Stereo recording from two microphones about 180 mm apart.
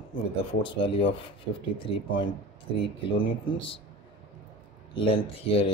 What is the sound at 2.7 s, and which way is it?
Speech, 30° left (ahead or behind).